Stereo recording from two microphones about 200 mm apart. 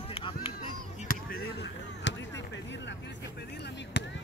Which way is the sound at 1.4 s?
65° left (ahead or behind).